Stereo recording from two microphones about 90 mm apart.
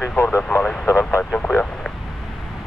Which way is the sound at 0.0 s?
25° left (ahead or behind).